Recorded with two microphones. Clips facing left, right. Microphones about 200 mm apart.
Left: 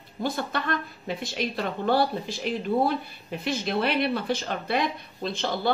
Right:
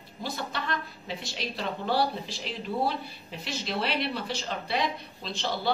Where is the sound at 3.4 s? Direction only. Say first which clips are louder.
Left 5 dB; 55° left (ahead or behind).